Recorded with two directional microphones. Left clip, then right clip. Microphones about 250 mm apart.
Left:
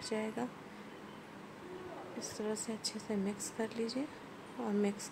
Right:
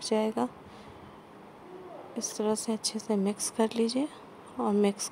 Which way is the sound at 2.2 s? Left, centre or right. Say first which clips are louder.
Right 10 dB; right.